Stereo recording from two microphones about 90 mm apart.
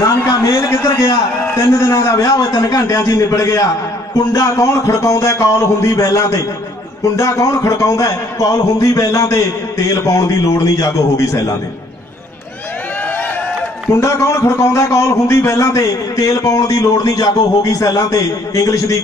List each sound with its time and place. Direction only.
0.0 s a sound: 40° left (ahead or behind)
0.5 s a man's voice: 40° left (ahead or behind)
13.9 s a man's voice: 30° left (ahead or behind)